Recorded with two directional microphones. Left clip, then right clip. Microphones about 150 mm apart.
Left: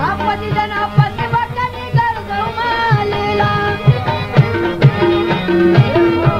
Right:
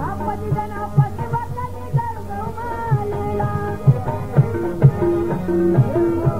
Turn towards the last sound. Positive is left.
turn(degrees=30)  # may be behind; listen again after turning